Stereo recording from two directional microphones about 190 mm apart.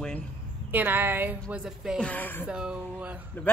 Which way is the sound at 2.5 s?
5° right (ahead or behind).